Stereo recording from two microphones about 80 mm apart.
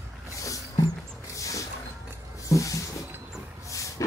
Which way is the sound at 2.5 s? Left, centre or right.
Left.